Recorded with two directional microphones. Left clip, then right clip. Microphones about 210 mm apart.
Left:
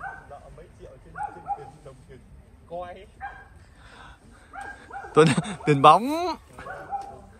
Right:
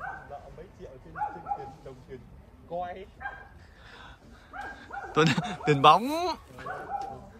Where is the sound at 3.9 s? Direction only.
10° right (ahead or behind).